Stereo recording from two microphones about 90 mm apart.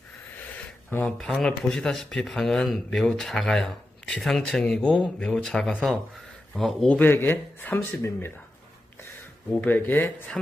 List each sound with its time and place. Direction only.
0.8 s speech: 20° left (ahead or behind)
1.1 s speech: 5° left (ahead or behind)
6.9 s speech: 20° left (ahead or behind)
9.5 s speech: 20° left (ahead or behind)